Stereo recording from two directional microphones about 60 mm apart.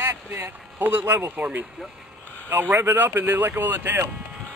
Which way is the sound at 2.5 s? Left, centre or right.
Right.